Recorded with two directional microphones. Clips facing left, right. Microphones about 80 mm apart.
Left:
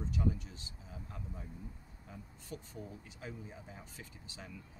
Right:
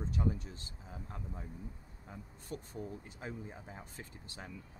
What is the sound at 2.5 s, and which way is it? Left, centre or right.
Speech, right.